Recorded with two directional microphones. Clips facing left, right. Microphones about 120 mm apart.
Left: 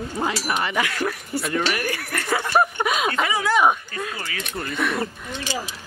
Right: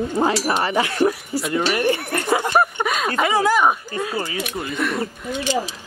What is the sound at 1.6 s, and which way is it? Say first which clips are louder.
Speech: right 6 dB; 25° right (ahead or behind).